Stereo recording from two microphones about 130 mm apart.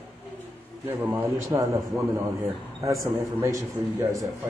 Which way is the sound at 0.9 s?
15° right (ahead or behind).